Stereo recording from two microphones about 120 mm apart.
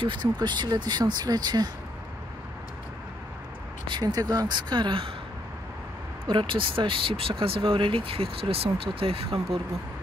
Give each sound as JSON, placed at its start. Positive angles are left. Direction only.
{"t": 0.0, "sound": "speech", "side_deg": -45}
{"t": 3.9, "sound": "speech", "side_deg": -35}
{"t": 6.2, "sound": "speech", "side_deg": -45}